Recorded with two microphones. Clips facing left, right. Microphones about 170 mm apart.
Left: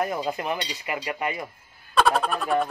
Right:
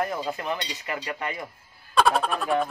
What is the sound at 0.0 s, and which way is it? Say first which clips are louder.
Cutlery: left 2 dB; 20° left (ahead or behind).